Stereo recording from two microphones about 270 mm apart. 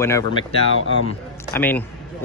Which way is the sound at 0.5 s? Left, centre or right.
Left.